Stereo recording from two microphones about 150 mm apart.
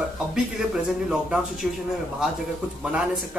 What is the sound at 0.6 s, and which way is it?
A woman's voice, 5° right (ahead or behind).